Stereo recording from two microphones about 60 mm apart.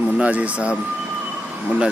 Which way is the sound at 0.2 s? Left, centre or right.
Right.